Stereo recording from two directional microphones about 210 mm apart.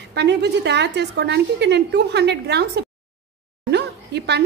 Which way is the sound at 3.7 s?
55° right (ahead or behind).